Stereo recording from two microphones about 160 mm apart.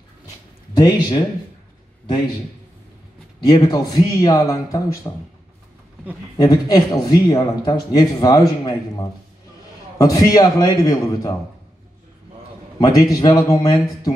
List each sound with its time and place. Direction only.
0.7 s speech: 25° left (ahead or behind)
3.3 s speech: 25° left (ahead or behind)
6.3 s speech: 25° left (ahead or behind)
9.9 s speech: 20° left (ahead or behind)
12.8 s speech: 20° left (ahead or behind)